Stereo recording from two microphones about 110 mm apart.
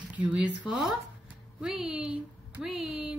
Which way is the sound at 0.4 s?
5° right (ahead or behind).